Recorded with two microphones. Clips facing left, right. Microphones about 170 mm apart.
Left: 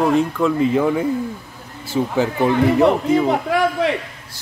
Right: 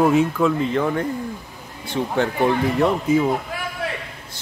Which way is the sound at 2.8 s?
70° left (ahead or behind).